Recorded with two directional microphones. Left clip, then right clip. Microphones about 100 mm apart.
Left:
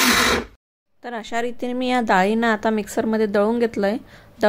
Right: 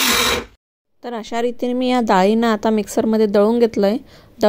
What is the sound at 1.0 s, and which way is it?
Speech, 25° right (ahead or behind).